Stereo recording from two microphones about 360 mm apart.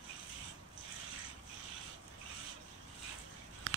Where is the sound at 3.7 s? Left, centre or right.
Right.